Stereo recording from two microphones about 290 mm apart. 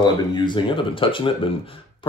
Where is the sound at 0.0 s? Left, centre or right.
Centre.